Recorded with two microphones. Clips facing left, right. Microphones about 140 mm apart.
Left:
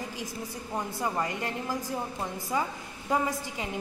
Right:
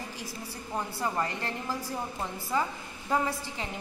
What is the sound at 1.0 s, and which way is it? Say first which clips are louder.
A woman's voice: left 1 dB; 15° left (ahead or behind).